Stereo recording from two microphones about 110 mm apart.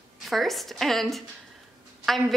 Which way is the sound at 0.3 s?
Centre (ahead or behind).